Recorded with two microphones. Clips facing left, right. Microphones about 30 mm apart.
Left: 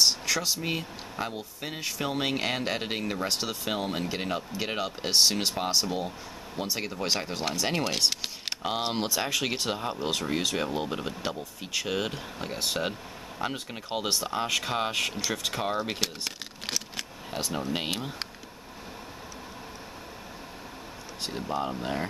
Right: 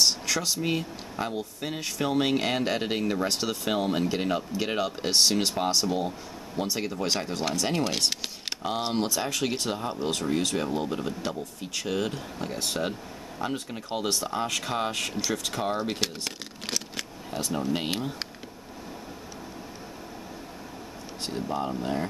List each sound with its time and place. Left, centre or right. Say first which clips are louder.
0.0 s speech: even; centre
8.9 s speech: right 1 dB; centre
16.0 s shuffling cards: right 1 dB; centre
17.3 s speech: right 2 dB; left
17.6 s speech: right 3 dB; centre
21.5 s speech: right 1 dB; centre